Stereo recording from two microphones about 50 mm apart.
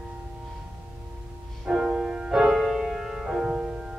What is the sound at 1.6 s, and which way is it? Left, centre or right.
Music, centre.